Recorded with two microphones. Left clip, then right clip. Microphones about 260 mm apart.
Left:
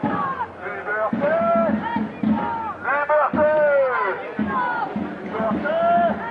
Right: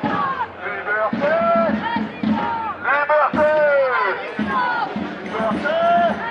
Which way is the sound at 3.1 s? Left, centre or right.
Centre.